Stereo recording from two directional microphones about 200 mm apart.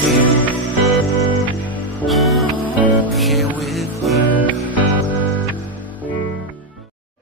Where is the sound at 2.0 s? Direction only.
Centre (ahead or behind).